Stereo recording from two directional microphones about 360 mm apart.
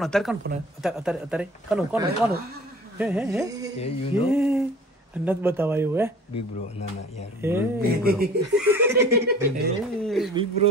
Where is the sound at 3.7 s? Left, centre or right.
Centre.